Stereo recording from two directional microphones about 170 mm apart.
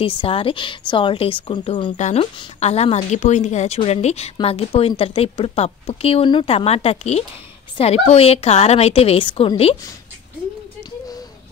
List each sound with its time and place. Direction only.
0.0 s a woman's voice: 30° left (ahead or behind)
2.0 s a woman's voice: 45° left (ahead or behind)